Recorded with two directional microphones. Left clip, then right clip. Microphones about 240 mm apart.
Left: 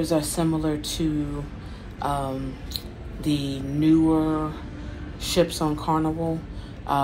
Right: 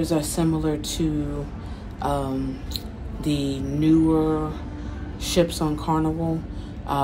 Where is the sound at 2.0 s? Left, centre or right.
Centre.